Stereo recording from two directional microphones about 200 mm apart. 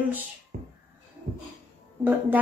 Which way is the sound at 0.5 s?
50° right (ahead or behind).